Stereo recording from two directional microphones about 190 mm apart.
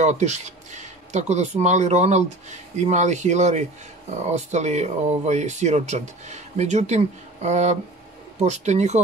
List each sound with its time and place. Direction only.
0.0 s speech: 40° right (ahead or behind)